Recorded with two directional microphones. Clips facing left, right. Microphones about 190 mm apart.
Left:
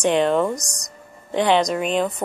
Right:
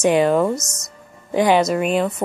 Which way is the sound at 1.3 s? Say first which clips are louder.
Right 2 dB; 10° right (ahead or behind).